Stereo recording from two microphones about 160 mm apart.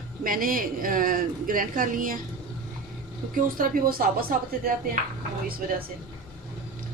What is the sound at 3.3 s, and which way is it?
Speech, 60° right (ahead or behind).